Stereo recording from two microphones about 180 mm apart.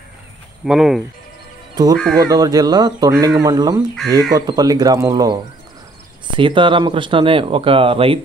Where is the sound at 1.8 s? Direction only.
20° right (ahead or behind).